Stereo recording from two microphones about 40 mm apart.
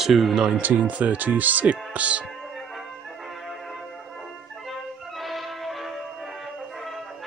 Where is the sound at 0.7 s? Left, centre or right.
Right.